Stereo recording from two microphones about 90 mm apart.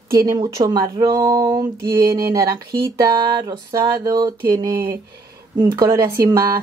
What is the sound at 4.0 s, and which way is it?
Speech, 40° right (ahead or behind).